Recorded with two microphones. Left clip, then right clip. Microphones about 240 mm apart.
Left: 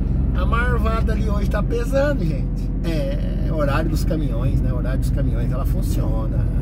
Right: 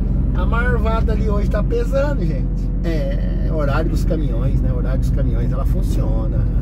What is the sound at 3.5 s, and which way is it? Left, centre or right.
Speech, left.